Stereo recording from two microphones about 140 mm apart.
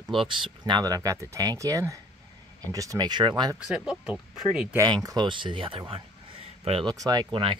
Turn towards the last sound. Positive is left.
turn(degrees=-40)  # may be behind; listen again after turning